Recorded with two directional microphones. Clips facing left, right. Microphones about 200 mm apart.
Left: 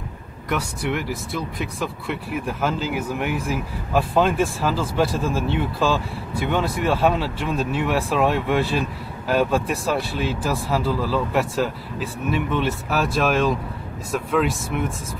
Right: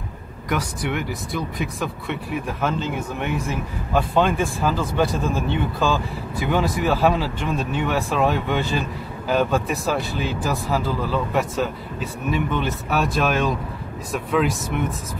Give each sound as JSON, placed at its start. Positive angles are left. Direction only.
{"t": 0.5, "sound": "speech", "side_deg": 0}